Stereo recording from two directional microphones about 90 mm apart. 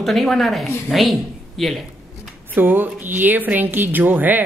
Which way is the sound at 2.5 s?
20° right (ahead or behind).